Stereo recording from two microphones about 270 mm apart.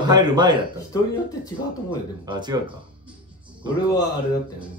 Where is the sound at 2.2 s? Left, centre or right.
Centre.